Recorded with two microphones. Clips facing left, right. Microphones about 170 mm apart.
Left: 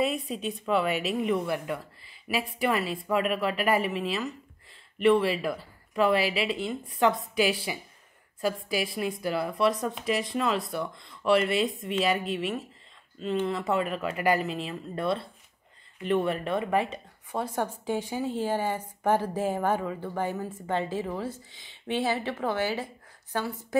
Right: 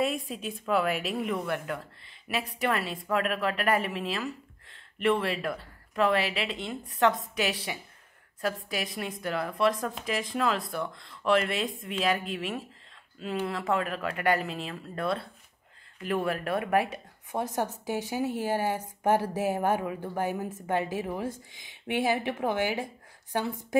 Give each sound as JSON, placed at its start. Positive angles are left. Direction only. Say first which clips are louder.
{"t": 0.0, "sound": "a woman's voice", "louder": "left 2 dB", "side_deg": 0}